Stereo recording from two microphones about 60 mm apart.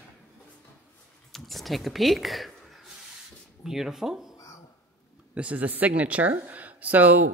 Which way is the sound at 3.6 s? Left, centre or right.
Centre.